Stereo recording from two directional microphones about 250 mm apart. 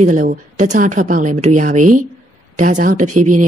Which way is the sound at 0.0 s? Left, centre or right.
Right.